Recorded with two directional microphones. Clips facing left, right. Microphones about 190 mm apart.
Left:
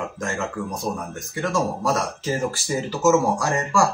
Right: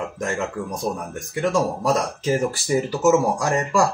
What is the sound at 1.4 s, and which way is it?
Speech, 15° right (ahead or behind).